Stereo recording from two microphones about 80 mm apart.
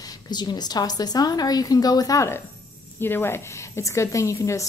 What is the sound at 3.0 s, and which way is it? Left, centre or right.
A woman's voice, left.